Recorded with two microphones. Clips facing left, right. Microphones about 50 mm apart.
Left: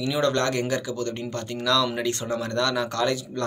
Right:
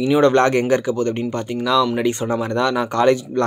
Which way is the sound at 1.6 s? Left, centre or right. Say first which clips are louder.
Right 6 dB; centre.